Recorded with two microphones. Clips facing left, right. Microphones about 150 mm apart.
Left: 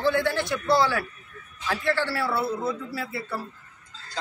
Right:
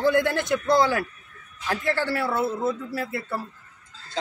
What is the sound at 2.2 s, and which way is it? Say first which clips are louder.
Speech: right 2 dB; 20° right (ahead or behind).